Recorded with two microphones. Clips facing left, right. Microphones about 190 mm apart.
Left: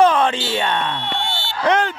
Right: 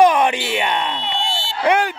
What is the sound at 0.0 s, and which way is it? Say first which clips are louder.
Speech: right 1 dB; 15° right (ahead or behind).